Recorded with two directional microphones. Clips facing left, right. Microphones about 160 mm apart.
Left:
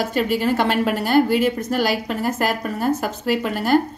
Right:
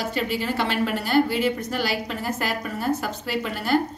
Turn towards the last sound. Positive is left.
turn(degrees=45)  # may be behind; listen again after turning